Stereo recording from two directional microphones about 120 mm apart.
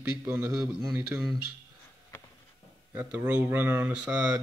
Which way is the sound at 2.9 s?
15° right (ahead or behind).